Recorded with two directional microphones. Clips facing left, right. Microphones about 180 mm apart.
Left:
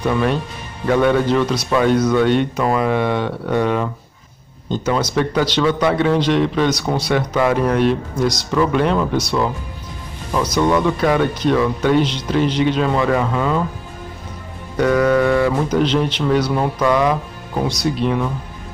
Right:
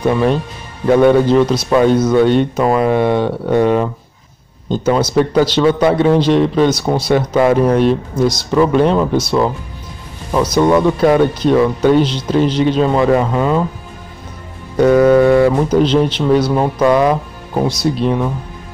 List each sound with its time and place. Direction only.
0.0 s speech: 30° right (ahead or behind)
14.8 s speech: 30° right (ahead or behind)